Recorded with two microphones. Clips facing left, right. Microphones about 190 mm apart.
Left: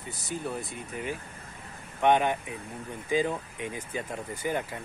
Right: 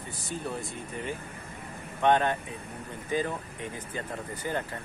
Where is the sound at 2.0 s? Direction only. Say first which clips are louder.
Left 1 dB; 15° left (ahead or behind).